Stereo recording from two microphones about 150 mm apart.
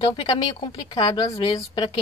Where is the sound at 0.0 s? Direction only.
30° left (ahead or behind).